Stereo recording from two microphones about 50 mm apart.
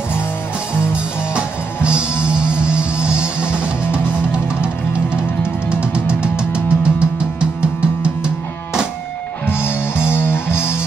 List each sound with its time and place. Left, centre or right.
0.7 s music: right
9.5 s music: left